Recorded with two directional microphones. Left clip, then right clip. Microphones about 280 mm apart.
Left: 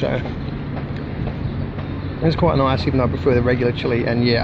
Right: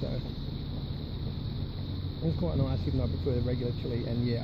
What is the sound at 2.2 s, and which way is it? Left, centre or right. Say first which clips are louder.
Speech: left 17 dB; left.